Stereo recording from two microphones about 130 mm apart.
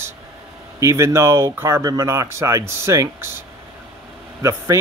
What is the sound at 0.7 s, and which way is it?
Speech, 20° right (ahead or behind).